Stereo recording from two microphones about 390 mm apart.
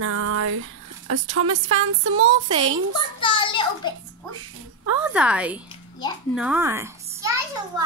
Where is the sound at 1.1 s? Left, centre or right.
Right.